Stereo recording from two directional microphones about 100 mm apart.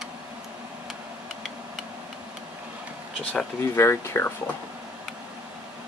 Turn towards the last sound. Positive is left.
turn(degrees=25)  # may be behind; listen again after turning